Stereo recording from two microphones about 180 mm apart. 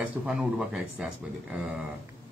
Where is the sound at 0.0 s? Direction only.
5° right (ahead or behind).